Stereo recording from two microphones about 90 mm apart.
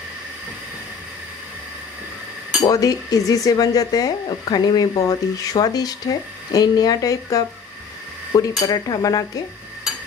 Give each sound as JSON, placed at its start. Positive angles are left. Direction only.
{"t": 2.6, "sound": "speech", "side_deg": 45}